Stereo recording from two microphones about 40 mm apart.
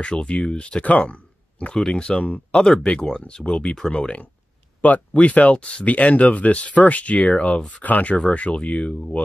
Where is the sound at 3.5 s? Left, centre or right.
Left.